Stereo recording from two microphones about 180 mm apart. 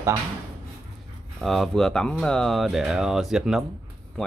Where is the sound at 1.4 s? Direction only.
Centre (ahead or behind).